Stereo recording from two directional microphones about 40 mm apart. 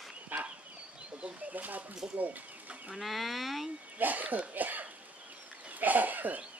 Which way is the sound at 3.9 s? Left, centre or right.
Right.